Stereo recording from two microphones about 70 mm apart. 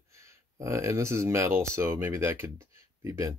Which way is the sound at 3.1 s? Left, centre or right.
Right.